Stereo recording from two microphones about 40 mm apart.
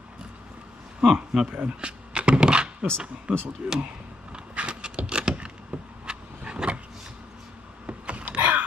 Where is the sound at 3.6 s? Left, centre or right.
Right.